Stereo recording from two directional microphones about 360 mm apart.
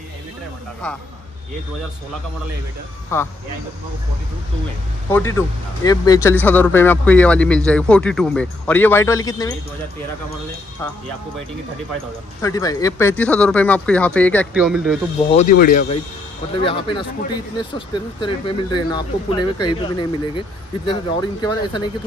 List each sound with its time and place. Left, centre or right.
0.8 s speech: centre
3.1 s speech: centre
5.1 s speech: centre
12.4 s speech: centre
15.3 s speech: left